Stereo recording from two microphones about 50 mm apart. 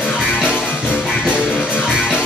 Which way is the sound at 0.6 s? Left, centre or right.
Left.